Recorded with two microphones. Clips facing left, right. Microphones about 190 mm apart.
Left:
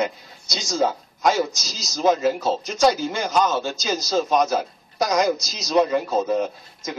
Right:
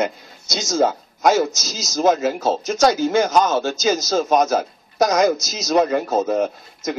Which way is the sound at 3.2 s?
45° right (ahead or behind).